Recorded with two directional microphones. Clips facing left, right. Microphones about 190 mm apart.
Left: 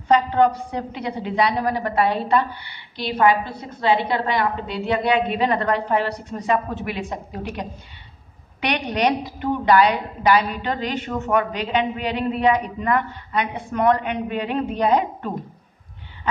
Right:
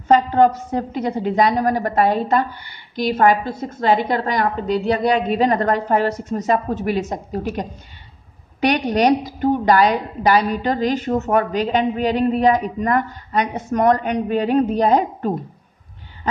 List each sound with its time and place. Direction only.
0.1 s a woman's voice: 45° right (ahead or behind)
8.5 s a woman's voice: 40° right (ahead or behind)